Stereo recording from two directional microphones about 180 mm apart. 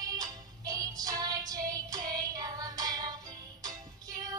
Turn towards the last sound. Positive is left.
turn(degrees=-20)  # may be behind; listen again after turning